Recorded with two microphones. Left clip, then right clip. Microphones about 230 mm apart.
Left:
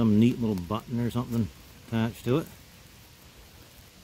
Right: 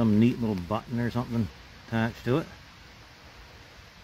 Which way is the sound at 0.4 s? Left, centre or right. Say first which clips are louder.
Right 1 dB; centre.